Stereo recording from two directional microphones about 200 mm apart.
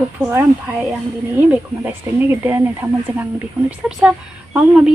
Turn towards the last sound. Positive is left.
turn(degrees=-5)  # may be behind; listen again after turning